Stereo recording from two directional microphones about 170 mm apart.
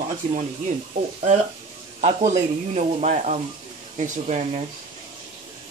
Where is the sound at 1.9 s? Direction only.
45° right (ahead or behind).